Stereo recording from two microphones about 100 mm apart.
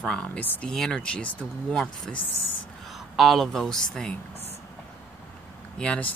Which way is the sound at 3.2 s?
Centre (ahead or behind).